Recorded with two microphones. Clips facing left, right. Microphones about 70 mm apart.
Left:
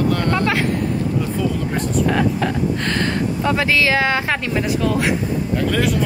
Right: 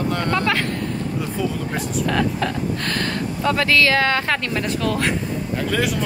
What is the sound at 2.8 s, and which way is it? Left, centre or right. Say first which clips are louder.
Speech: left 4 dB; left.